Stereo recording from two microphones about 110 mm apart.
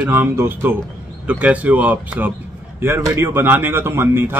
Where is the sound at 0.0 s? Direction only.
20° right (ahead or behind).